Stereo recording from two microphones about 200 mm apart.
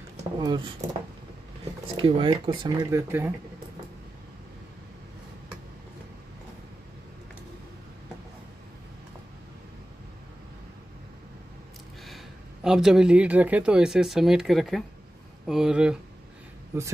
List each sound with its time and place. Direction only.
0.4 s speech: 20° right (ahead or behind)
2.0 s speech: 25° right (ahead or behind)
12.6 s speech: centre (ahead or behind)